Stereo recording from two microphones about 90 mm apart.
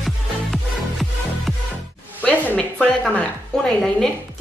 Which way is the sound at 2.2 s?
20° left (ahead or behind).